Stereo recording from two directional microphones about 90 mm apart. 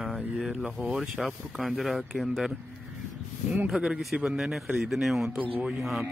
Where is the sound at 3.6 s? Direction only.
5° right (ahead or behind).